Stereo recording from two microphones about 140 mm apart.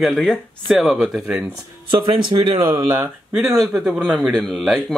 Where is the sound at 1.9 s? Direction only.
35° right (ahead or behind).